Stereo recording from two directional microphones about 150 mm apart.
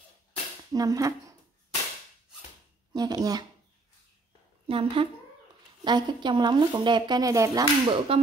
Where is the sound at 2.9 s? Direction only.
25° right (ahead or behind).